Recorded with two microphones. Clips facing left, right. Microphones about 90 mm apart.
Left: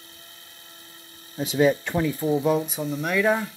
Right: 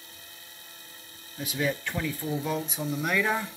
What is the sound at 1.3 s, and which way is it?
Speech, 30° left (ahead or behind).